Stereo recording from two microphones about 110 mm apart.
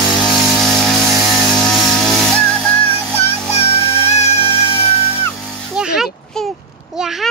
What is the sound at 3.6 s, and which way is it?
Music, 70° left (ahead or behind).